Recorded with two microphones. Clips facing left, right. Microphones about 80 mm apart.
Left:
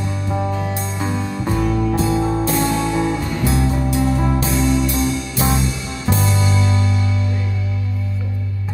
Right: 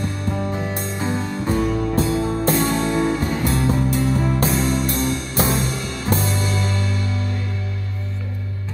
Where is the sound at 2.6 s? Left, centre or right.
Right.